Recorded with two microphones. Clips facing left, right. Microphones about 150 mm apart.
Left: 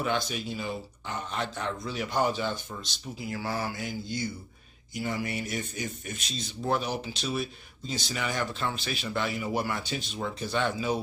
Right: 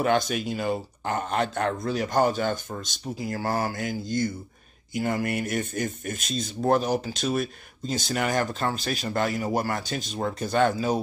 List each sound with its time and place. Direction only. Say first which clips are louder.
0.0 s speech: right 6 dB; 55° right (ahead or behind)